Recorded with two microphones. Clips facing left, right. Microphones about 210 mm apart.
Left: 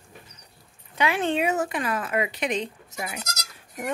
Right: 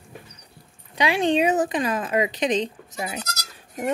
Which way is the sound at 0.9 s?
15° right (ahead or behind).